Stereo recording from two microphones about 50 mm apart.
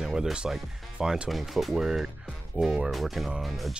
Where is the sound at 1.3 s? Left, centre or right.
Centre.